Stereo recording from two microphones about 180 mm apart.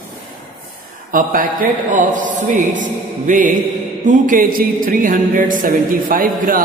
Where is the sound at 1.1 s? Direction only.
50° right (ahead or behind).